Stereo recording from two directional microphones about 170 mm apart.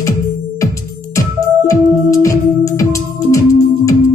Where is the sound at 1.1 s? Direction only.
20° left (ahead or behind).